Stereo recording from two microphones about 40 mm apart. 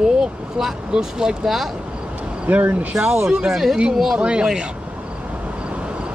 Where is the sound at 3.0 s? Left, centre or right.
Centre.